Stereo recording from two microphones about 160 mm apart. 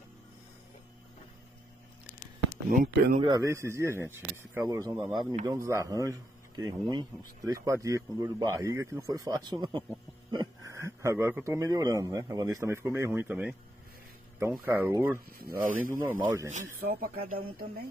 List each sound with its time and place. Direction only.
2.7 s speech: 60° right (ahead or behind)
3.2 s a man's voice: 25° right (ahead or behind); by 13.6 s 5° right (ahead or behind)
14.9 s speech: 15° right (ahead or behind)
15.1 s speech: 70° right (ahead or behind)
16.0 s speech: 15° right (ahead or behind)
16.4 s speech: 55° right (ahead or behind)